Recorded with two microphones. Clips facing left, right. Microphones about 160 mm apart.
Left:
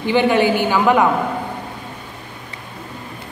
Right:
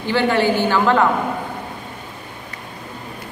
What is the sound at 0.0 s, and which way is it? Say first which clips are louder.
A woman's voice: left 2 dB; 15° left (ahead or behind).